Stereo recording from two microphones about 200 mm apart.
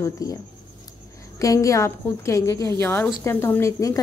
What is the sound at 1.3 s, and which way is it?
Speech, 15° left (ahead or behind).